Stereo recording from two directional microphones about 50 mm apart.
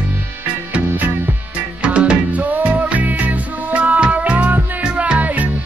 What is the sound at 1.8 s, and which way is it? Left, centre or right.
Music, right.